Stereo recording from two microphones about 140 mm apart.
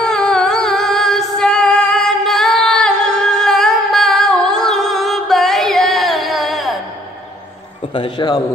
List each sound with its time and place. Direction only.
0.0 s music: 5° left (ahead or behind)
7.9 s a man's voice: 35° left (ahead or behind)